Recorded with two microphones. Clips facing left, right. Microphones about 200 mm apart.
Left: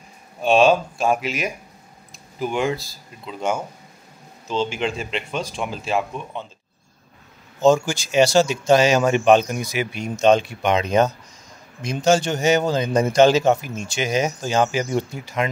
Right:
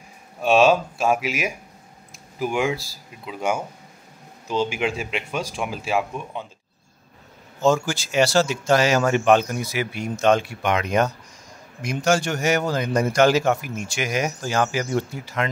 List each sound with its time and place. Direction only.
0.4 s speech: 5° right (ahead or behind)
7.6 s a man's voice: 15° left (ahead or behind)